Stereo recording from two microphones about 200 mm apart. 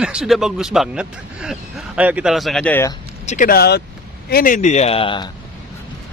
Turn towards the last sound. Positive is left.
turn(degrees=25)  # may be behind; listen again after turning